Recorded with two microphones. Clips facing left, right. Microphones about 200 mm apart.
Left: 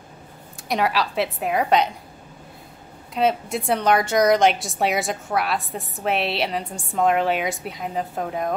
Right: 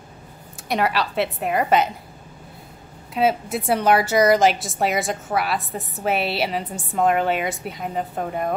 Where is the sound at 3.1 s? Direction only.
5° right (ahead or behind).